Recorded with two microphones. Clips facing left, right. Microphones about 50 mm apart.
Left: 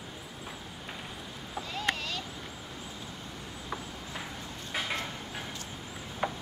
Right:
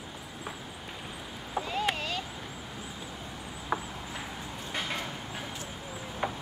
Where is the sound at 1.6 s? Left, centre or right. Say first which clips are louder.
Right 3 dB; centre.